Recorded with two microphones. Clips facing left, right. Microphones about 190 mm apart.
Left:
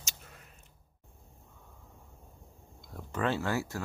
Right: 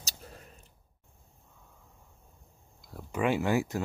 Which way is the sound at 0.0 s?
35° right (ahead or behind).